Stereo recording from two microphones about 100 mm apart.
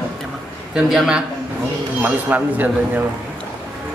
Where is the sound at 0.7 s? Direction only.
5° right (ahead or behind).